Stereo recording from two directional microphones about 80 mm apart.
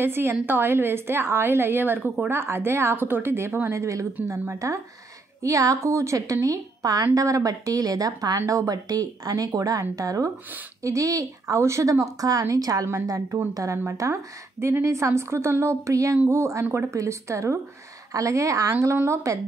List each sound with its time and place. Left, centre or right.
0.0 s a woman's voice: right